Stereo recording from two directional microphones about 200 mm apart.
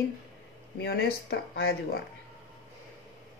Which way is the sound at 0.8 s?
55° left (ahead or behind).